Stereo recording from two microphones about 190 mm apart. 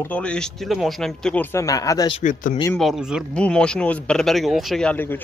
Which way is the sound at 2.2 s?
40° left (ahead or behind).